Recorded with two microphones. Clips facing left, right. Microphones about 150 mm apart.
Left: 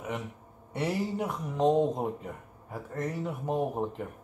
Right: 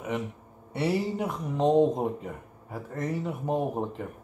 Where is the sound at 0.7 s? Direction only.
10° right (ahead or behind).